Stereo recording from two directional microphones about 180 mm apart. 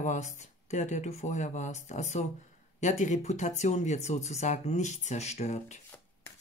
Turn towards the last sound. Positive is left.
turn(degrees=40)  # may be behind; listen again after turning